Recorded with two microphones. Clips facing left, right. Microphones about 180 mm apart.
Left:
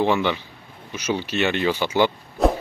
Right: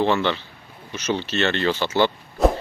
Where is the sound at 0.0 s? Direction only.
10° left (ahead or behind).